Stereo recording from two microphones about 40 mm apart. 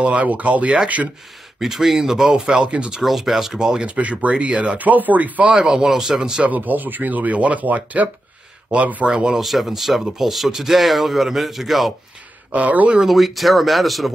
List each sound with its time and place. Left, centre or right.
0.0 s speech: right
1.6 s speech: centre
3.5 s speech: centre
3.9 s speech: right
4.7 s speech: right
5.5 s speech: centre
6.4 s speech: right
9.0 s speech: right
9.4 s speech: centre
12.5 s speech: right
13.0 s speech: centre